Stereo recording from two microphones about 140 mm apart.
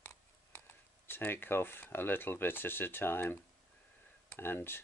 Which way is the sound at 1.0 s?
15° left (ahead or behind).